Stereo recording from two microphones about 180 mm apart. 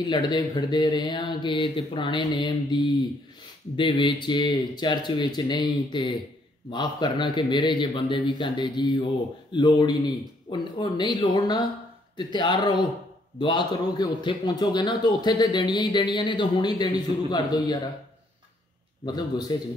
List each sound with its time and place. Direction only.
0.0 s a man's voice: 25° left (ahead or behind)
19.0 s a man's voice: 20° left (ahead or behind)